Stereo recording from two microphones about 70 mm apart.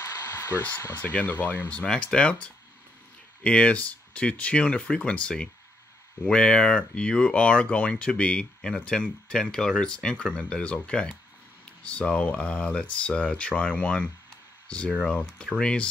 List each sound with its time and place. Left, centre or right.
0.9 s speech: left